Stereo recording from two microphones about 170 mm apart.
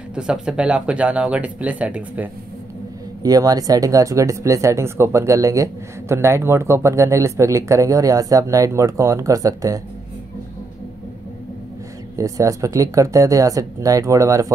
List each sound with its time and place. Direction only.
0.1 s speech: 5° right (ahead or behind)
3.2 s speech: 20° right (ahead or behind)
12.2 s speech: 20° right (ahead or behind)